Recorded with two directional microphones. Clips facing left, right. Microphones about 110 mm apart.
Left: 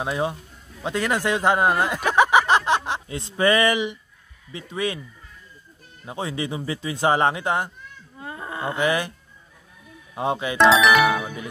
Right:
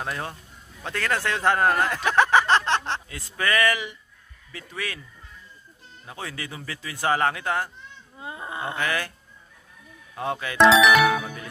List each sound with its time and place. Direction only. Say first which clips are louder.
0.0 s speech: left 7 dB; 15° left (ahead or behind)
3.1 s speech: left 8 dB; 25° left (ahead or behind)
6.0 s speech: left 7 dB; 20° left (ahead or behind)
7.9 s a sound: left 1 dB; 15° right (ahead or behind)
8.6 s speech: left 6 dB; 20° left (ahead or behind)
10.1 s speech: left 4 dB; 20° left (ahead or behind)
10.6 s speech: even; centre (ahead or behind)